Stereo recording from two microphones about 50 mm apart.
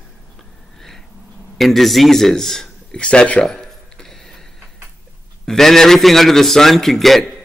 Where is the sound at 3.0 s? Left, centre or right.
Left.